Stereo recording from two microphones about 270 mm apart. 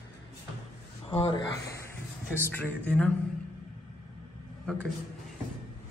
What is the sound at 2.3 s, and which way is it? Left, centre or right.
Speech, centre.